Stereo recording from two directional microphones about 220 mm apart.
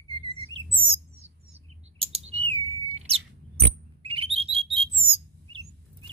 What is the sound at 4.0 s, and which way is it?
Bird, 25° right (ahead or behind).